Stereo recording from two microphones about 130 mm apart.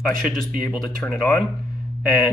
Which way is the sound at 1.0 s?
Centre (ahead or behind).